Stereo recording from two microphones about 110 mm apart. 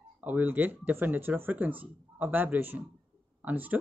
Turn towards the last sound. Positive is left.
turn(degrees=-15)  # may be behind; listen again after turning